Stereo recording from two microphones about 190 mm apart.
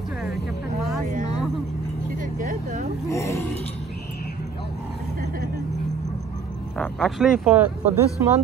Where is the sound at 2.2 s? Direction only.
45° right (ahead or behind).